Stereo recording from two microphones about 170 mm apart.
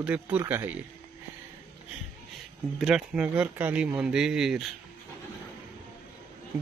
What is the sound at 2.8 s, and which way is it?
Speech, 5° right (ahead or behind).